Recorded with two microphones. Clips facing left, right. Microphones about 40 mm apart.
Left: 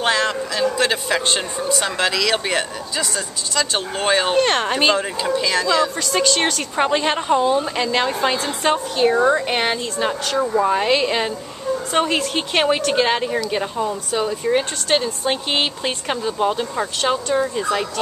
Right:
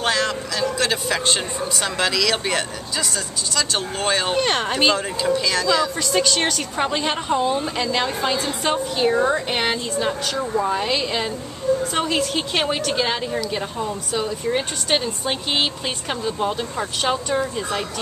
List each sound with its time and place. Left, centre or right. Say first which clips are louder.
0.0 s a woman's voice: left 2 dB; centre